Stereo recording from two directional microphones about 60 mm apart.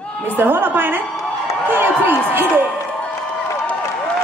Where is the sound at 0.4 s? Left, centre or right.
Right.